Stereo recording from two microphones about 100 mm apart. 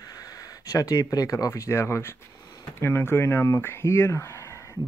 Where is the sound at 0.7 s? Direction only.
35° left (ahead or behind).